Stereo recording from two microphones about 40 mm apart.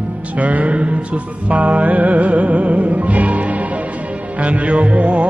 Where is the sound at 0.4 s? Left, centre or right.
Right.